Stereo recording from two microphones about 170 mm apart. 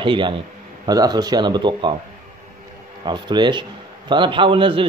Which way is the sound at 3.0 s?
25° right (ahead or behind).